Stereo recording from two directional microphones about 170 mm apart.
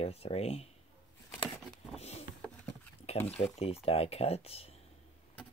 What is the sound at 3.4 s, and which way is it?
Speech, 35° left (ahead or behind).